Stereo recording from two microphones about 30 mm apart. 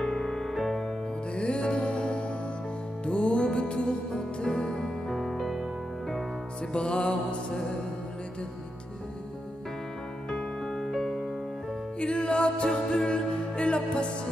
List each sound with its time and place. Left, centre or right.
0.0 s music: centre
1.3 s music: left
4.5 s music: centre
6.7 s music: left
10.3 s music: centre
12.0 s music: left